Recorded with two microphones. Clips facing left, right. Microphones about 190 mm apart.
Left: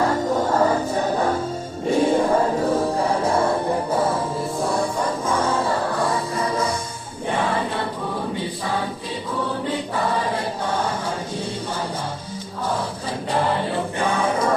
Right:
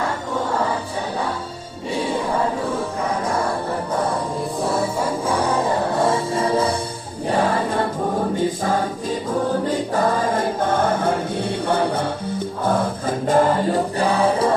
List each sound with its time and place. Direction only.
5.3 s music: 20° right (ahead or behind)
7.2 s music: 40° right (ahead or behind)
8.4 s choir: 45° right (ahead or behind)
13.3 s music: 45° right (ahead or behind)